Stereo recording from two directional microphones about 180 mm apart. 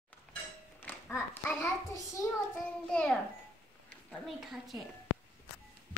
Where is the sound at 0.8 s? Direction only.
10° left (ahead or behind).